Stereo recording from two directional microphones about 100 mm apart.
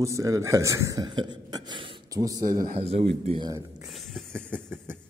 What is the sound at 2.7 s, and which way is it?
Speech, 85° right.